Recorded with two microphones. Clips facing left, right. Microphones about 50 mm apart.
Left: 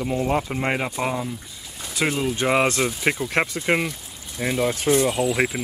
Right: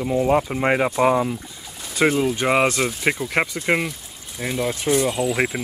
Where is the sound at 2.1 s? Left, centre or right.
Centre.